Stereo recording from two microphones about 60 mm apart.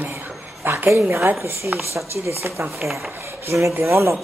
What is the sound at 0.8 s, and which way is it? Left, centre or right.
Speech, right.